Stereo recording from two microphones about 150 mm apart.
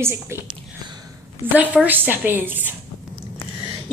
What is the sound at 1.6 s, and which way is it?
A woman's voice, 10° right (ahead or behind).